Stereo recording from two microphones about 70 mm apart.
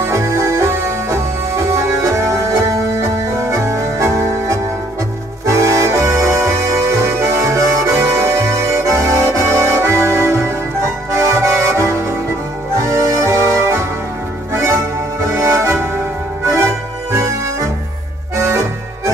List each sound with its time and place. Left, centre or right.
0.0 s music: right
5.5 s accordion: right
12.8 s music: right
18.3 s accordion: right